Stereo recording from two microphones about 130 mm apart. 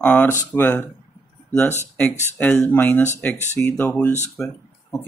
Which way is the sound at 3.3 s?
65° left (ahead or behind).